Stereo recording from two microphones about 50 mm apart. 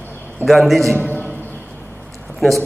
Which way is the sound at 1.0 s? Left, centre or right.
Left.